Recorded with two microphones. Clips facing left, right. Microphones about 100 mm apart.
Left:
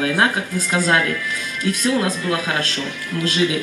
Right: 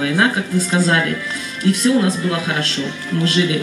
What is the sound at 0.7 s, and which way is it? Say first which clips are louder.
Speech: left 1 dB; 30° right (ahead or behind).